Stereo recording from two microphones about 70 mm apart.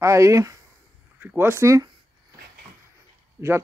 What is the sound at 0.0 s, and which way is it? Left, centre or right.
Speech, right.